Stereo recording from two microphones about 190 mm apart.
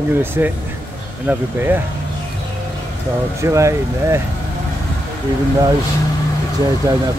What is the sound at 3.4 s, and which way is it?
Speech, 15° right (ahead or behind).